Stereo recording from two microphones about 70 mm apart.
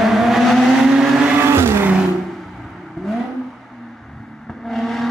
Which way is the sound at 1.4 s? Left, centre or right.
Right.